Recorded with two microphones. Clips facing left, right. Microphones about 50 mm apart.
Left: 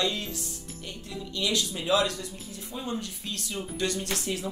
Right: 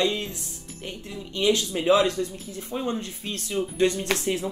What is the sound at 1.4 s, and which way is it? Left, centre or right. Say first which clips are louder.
Speech: right 7 dB; right.